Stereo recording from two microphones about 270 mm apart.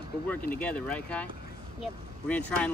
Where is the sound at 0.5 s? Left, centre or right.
Centre.